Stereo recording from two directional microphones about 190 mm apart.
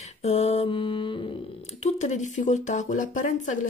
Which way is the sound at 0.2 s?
35° left (ahead or behind).